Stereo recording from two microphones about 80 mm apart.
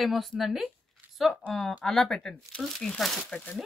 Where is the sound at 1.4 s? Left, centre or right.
Centre.